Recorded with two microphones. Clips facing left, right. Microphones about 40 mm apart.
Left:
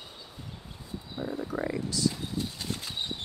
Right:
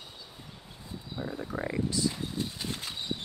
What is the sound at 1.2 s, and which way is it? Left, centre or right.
Speech, centre.